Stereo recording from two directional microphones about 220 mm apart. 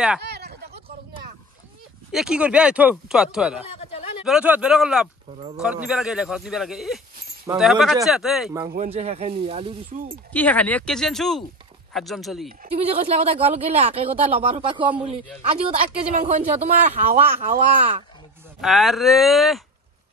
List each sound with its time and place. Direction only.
0.2 s a sound: 50° right (ahead or behind)
2.1 s speech: 5° right (ahead or behind)
3.6 s a sound: 25° left (ahead or behind)
4.2 s speech: 5° right (ahead or behind)
8.7 s speech: 30° right (ahead or behind)
10.3 s speech: 5° left (ahead or behind)
12.7 s speech: 25° right (ahead or behind)
16.1 s speech: 30° right (ahead or behind)
18.6 s speech: centre (ahead or behind)